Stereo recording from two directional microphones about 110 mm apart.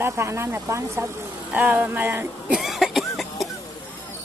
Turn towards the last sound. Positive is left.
turn(degrees=0)  # may be behind; listen again after turning